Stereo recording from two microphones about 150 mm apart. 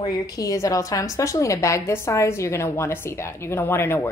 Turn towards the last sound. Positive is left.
turn(degrees=15)  # may be behind; listen again after turning